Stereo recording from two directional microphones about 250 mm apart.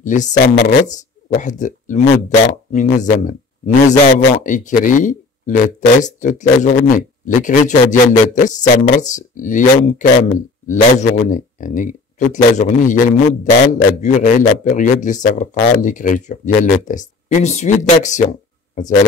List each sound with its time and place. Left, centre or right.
0.0 s speech: left